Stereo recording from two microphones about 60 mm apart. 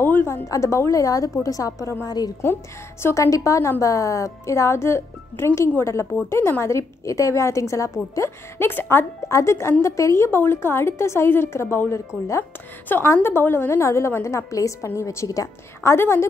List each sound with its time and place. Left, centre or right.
0.0 s a woman's voice: left
0.5 s a woman's voice: left
2.0 s a woman's voice: left
2.4 s a woman's voice: left
6.6 s a woman's voice: left
8.6 s a woman's voice: left
9.3 s a woman's voice: left
12.8 s a woman's voice: left
14.2 s a woman's voice: left
15.0 s a woman's voice: left
15.2 s a woman's voice: left
16.0 s a woman's voice: left